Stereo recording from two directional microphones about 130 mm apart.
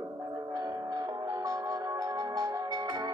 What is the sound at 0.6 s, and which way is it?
Music, 30° right (ahead or behind).